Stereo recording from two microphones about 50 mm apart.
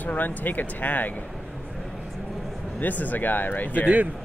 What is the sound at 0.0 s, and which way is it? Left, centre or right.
Speech, left.